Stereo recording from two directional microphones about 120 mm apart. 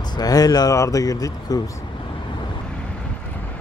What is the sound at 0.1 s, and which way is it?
Speech, 30° left (ahead or behind).